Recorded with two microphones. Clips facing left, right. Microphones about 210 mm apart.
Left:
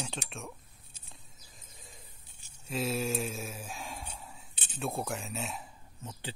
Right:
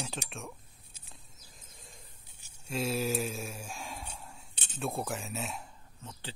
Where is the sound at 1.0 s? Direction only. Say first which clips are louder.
Even; centre (ahead or behind).